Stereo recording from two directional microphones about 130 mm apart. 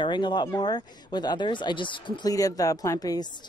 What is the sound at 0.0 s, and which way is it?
A woman's voice, 35° left (ahead or behind).